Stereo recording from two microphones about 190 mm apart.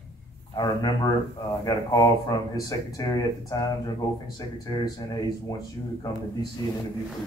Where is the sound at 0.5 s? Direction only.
20° left (ahead or behind).